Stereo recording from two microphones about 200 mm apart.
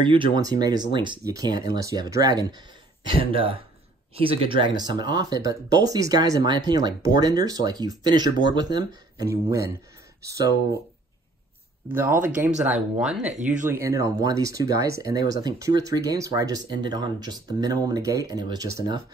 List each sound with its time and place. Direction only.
0.0 s speech: 25° right (ahead or behind)
11.9 s speech: 10° right (ahead or behind)